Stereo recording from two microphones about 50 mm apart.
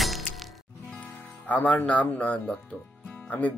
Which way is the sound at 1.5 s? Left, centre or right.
Left.